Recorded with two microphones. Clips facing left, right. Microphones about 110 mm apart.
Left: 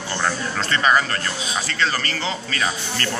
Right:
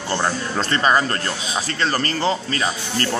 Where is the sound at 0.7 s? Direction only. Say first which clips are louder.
Right 1 dB; 35° right (ahead or behind).